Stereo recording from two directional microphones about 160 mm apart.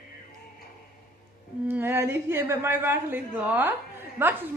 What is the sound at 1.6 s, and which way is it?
Speech, 15° right (ahead or behind).